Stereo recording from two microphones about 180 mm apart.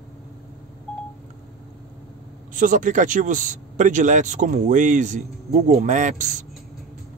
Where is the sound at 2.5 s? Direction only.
45° right (ahead or behind).